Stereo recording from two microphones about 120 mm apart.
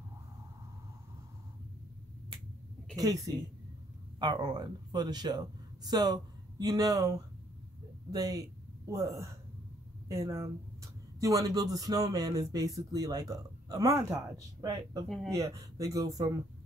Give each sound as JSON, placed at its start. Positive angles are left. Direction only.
{"t": 3.0, "sound": "speech", "side_deg": -30}
{"t": 8.1, "sound": "speech", "side_deg": -30}